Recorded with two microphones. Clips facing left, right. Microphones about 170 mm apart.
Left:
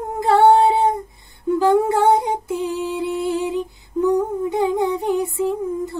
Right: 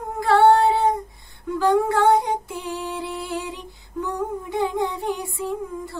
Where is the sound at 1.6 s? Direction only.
20° left (ahead or behind).